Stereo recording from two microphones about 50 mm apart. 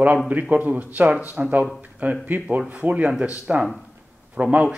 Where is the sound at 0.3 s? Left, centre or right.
Right.